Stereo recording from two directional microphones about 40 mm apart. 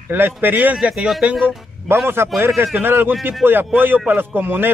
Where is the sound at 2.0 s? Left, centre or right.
Right.